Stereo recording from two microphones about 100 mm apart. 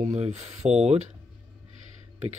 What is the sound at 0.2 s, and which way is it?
Speech, 90° right.